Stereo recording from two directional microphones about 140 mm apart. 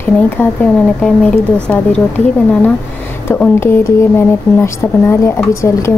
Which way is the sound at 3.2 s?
15° left (ahead or behind).